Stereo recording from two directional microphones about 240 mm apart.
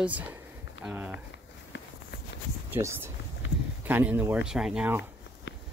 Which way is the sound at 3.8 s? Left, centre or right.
Centre.